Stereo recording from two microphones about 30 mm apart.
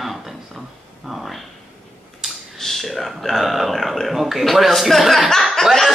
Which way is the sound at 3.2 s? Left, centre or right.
Centre.